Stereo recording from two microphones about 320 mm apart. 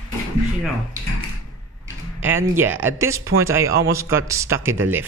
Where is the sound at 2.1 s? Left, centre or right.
Centre.